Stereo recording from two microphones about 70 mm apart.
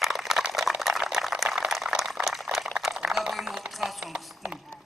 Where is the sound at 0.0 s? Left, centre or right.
Centre.